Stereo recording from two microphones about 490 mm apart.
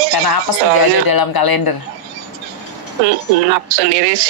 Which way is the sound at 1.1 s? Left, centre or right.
Left.